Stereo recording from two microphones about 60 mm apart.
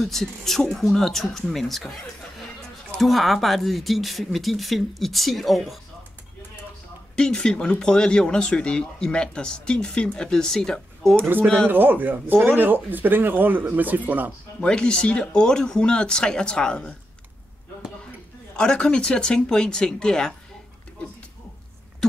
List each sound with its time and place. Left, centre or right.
0.0 s speech: centre
3.0 s speech: centre
7.2 s speech: centre
11.1 s speech: right
14.6 s speech: centre
18.6 s speech: centre